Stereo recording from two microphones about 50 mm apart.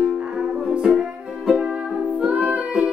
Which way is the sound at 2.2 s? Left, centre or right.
Right.